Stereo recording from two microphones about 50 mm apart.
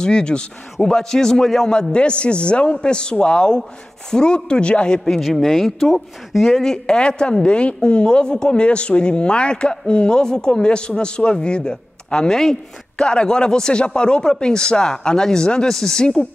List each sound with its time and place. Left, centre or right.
0.0 s a woman's voice: centre
5.2 s a woman's voice: centre